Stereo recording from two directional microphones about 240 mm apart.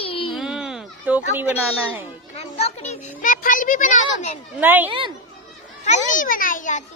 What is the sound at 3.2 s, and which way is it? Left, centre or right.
A child's voice, left.